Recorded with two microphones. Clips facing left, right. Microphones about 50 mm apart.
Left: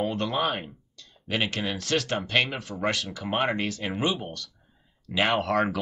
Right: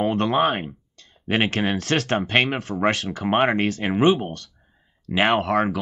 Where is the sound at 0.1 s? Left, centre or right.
Right.